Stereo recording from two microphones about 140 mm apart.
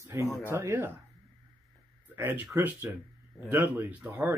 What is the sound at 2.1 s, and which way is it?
Speech, 15° right (ahead or behind).